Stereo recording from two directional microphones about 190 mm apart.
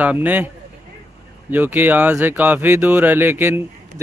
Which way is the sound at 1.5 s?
10° right (ahead or behind).